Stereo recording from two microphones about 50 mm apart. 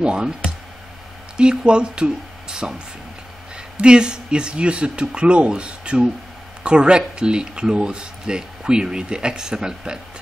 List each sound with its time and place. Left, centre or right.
0.0 s speech: centre
1.3 s speech: centre
3.8 s speech: centre